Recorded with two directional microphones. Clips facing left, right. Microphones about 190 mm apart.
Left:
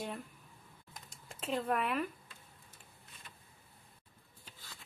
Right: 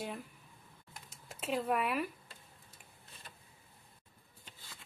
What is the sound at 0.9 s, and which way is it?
Computer keyboard, 5° right (ahead or behind).